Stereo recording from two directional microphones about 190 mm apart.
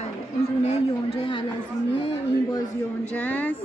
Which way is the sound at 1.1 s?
20° left (ahead or behind).